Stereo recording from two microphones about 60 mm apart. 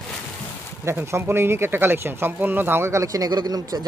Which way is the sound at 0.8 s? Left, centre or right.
Right.